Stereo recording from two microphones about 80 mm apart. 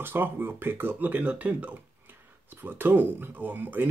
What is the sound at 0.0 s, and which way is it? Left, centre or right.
Speech, right.